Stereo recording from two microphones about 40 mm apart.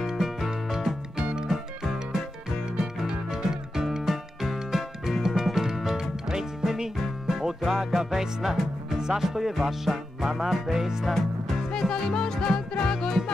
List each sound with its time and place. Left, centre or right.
0.1 s music: centre; by 1.5 s right
1.5 s music: centre
2.7 s music: right
11.1 s music: centre